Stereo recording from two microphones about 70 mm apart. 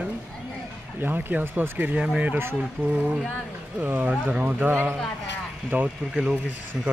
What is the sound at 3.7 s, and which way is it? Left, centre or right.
Speech, right.